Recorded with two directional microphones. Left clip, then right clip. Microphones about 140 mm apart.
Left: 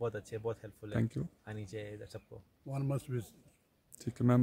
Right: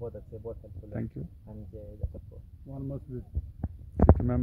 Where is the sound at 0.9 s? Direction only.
25° left (ahead or behind).